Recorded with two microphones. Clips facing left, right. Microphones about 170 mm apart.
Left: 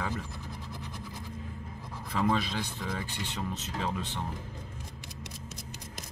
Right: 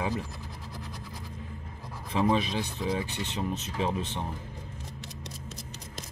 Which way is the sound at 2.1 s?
15° right (ahead or behind).